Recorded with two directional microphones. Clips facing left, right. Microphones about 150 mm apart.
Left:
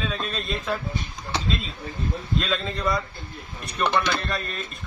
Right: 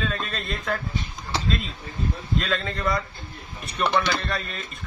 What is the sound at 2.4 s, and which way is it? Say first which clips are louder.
A man's voice: right 1 dB; centre (ahead or behind).